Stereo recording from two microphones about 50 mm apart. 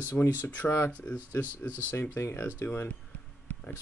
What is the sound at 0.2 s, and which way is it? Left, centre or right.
Speech, left.